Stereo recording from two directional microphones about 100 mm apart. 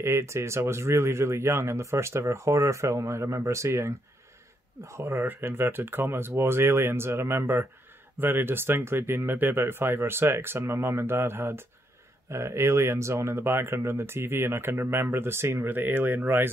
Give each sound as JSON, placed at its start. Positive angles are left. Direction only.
{"t": 0.0, "sound": "speech", "side_deg": -30}